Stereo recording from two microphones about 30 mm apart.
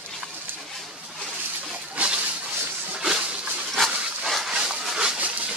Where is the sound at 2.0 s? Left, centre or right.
Right.